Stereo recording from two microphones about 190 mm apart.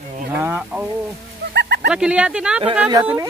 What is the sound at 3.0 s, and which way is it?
Speech, 10° right (ahead or behind).